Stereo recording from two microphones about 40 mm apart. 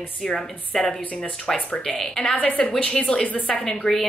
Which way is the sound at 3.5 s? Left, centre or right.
Left.